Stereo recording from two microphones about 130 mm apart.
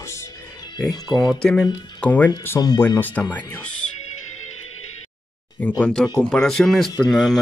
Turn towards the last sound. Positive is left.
turn(degrees=0)  # may be behind; listen again after turning